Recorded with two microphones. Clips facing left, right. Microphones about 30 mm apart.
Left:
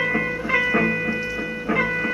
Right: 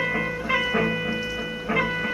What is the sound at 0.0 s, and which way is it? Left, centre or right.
Music, centre.